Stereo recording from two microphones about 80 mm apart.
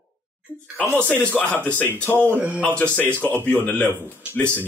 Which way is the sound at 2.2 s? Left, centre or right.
Right.